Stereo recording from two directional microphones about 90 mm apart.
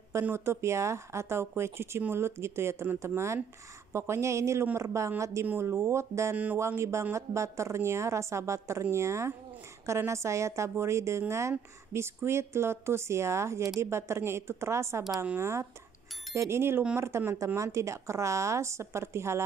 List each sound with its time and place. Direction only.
0.2 s a woman's voice: 25° right (ahead or behind)
6.3 s speech: 20° right (ahead or behind)
6.6 s a woman's voice: 30° right (ahead or behind)
16.3 s a woman's voice: 30° right (ahead or behind)